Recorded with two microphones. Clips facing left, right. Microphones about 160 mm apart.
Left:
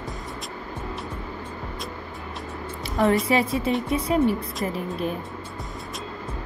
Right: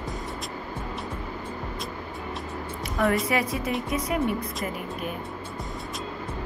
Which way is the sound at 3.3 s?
25° left (ahead or behind).